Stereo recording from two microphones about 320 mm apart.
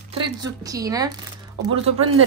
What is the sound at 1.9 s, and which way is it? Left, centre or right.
Speech, right.